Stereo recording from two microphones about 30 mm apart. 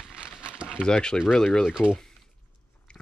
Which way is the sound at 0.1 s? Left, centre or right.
Right.